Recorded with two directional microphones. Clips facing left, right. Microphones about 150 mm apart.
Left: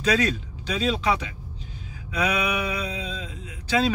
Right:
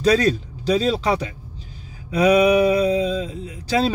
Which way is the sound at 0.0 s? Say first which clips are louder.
Right 6 dB; 35° right (ahead or behind).